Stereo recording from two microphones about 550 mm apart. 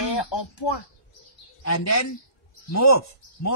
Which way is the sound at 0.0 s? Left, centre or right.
Left.